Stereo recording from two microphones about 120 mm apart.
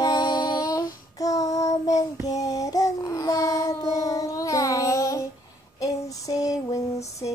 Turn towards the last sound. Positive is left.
turn(degrees=30)  # may be behind; listen again after turning